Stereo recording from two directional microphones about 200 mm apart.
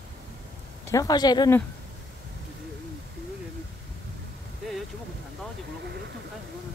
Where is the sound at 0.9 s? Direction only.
20° left (ahead or behind).